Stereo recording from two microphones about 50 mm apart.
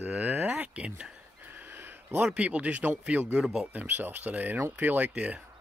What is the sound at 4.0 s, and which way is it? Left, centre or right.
Speech, right.